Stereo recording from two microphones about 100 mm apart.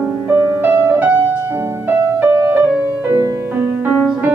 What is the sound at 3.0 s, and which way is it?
Music, 30° right (ahead or behind).